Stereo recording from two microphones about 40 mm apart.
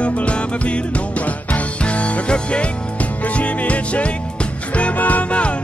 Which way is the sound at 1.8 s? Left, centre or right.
Left.